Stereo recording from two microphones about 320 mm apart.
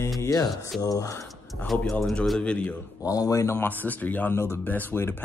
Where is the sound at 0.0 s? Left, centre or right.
Centre.